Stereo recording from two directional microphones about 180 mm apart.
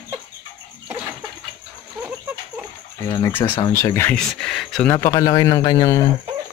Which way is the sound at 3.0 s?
25° left (ahead or behind).